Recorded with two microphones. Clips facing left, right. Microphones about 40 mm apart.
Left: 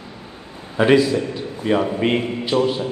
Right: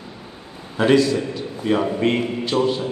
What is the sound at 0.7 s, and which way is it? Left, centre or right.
A man's voice, centre.